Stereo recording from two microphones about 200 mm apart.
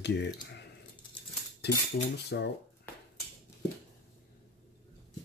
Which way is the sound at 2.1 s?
55° left (ahead or behind).